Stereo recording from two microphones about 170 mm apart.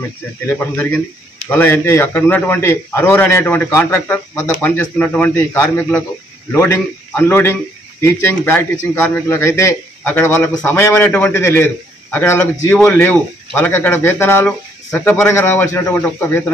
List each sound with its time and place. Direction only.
0.5 s a man's voice: 15° left (ahead or behind)